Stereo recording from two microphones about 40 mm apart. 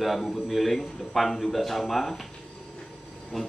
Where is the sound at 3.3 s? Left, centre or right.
Centre.